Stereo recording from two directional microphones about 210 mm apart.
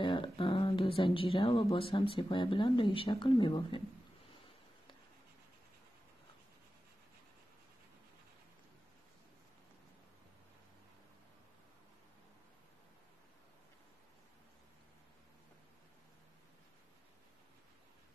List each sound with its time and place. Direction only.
0.0 s speech: 25° left (ahead or behind)